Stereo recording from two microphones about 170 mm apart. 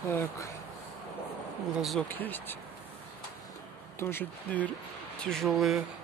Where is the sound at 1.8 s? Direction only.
Centre (ahead or behind).